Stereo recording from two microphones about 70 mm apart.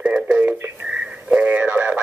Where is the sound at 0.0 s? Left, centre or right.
Centre.